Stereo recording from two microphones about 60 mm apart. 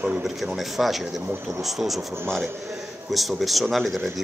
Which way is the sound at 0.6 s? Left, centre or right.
Centre.